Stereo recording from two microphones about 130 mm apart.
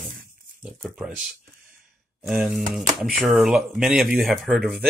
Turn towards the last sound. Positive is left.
turn(degrees=0)  # may be behind; listen again after turning